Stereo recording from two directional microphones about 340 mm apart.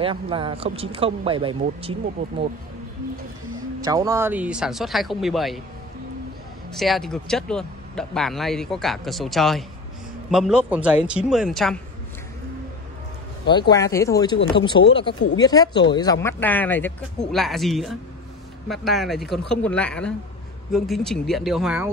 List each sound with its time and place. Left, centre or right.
0.0 s speech: centre
3.8 s speech: centre
6.7 s speech: centre
13.5 s speech: centre